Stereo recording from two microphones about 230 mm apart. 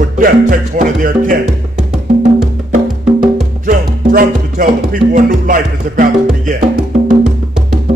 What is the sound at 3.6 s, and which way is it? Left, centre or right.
Music, right.